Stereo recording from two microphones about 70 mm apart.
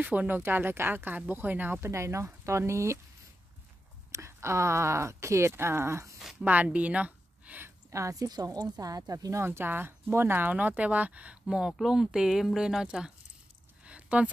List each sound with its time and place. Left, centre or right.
0.0 s speech: right
1.9 s speech: right
4.1 s speech: right
6.4 s speech: right
7.9 s speech: right
8.5 s speech: right
9.3 s speech: right; by 11.3 s centre
11.4 s speech: centre
13.8 s a sound: centre